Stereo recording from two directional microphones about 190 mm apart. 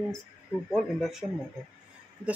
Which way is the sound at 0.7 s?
Centre (ahead or behind).